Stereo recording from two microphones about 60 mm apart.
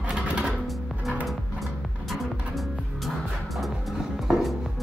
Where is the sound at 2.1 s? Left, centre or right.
Centre.